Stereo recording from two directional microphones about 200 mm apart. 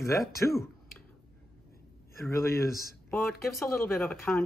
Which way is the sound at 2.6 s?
15° left (ahead or behind).